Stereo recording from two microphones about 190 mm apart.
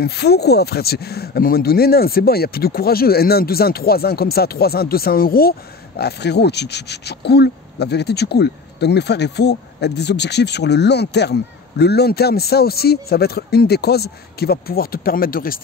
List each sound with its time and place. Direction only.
0.0 s speech: 60° left (ahead or behind)